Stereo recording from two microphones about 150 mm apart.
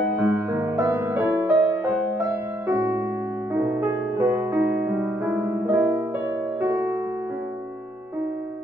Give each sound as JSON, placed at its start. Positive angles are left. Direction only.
{"t": 0.2, "sound": "music", "side_deg": -15}
{"t": 3.5, "sound": "music", "side_deg": -20}